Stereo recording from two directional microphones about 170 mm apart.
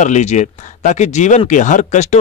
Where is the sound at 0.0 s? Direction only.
45° left (ahead or behind).